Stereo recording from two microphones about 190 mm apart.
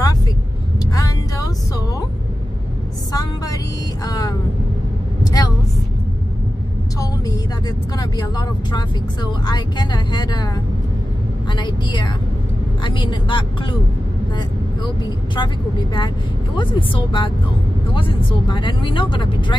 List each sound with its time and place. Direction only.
0.8 s vehicle: 20° left (ahead or behind)
3.1 s music: 20° left (ahead or behind)
4.0 s vehicle: 20° left (ahead or behind)
7.0 s speech: 20° left (ahead or behind)
15.3 s speech: 25° left (ahead or behind)